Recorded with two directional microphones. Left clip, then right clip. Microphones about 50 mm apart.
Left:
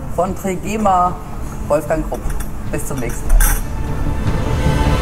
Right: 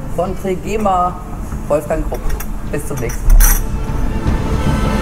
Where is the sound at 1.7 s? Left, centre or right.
Centre.